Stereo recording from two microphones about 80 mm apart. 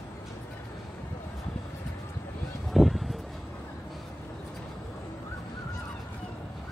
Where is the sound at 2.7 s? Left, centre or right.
Centre.